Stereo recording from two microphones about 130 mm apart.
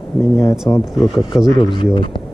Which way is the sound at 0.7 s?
35° left (ahead or behind).